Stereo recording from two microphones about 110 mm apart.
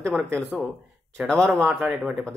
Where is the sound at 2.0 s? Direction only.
5° right (ahead or behind).